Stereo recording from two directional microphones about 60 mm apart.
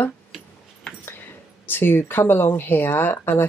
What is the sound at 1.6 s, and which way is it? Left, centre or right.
Speech, left.